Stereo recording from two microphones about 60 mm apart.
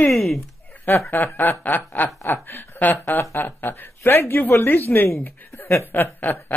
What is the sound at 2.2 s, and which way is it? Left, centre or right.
Speech, left.